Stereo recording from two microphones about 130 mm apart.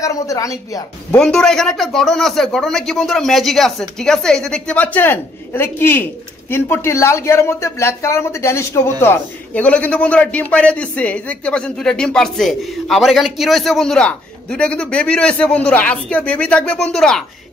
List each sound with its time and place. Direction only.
0.0 s speech: 25° left (ahead or behind)
1.1 s a man's voice: 5° left (ahead or behind)